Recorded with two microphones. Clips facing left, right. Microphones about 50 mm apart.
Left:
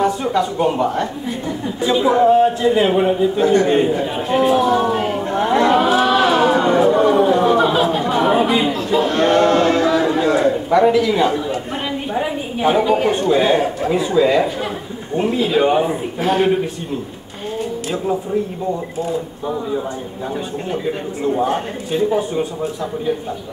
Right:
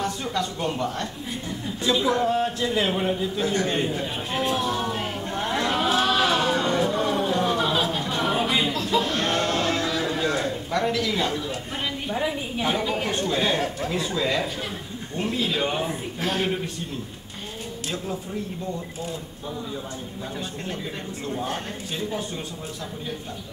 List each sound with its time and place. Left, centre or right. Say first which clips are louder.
0.0 s a man's voice: left 10 dB; centre
4.5 s a sound: left 10 dB; centre
7.3 s chatter: left 9 dB; centre
12.1 s a man's voice: left 4 dB; left
20.7 s a man's voice: left 10 dB; centre